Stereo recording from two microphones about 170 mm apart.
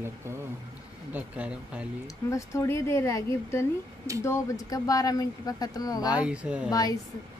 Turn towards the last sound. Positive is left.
turn(degrees=20)  # may be behind; listen again after turning